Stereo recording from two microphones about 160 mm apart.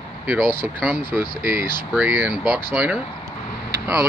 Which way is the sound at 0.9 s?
15° right (ahead or behind).